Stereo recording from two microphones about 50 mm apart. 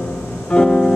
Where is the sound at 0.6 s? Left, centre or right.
Left.